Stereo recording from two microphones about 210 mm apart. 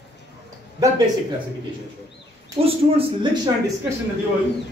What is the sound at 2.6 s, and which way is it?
Speech, 25° right (ahead or behind).